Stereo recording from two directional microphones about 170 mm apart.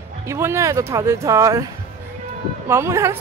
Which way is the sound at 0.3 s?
15° right (ahead or behind).